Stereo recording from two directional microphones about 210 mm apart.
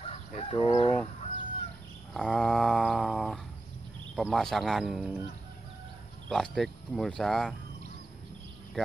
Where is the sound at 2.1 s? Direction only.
Centre (ahead or behind).